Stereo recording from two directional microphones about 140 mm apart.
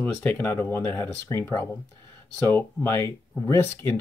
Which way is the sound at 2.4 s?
15° left (ahead or behind).